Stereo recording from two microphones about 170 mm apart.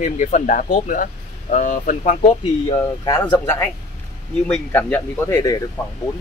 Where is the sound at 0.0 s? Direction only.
45° left (ahead or behind).